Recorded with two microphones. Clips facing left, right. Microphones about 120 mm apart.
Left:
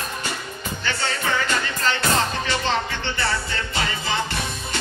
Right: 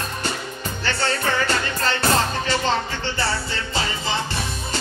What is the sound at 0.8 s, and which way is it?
Music, 40° right (ahead or behind).